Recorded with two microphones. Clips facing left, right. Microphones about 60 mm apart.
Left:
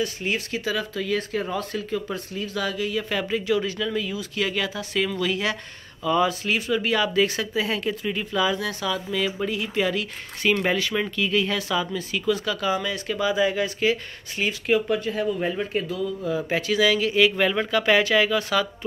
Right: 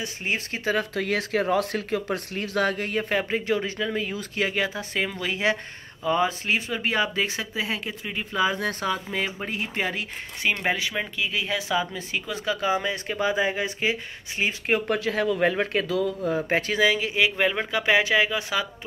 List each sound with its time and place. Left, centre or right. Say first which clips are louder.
0.0 s speech: left 3 dB; right
0.9 s speech: right 1 dB; right
3.1 s speech: even; right
14.9 s speech: even; right
16.2 s speech: right 1 dB; right
16.8 s speech: left 4 dB; centre